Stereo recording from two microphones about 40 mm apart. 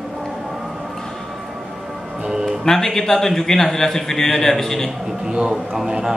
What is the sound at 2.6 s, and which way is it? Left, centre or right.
A man's voice, centre.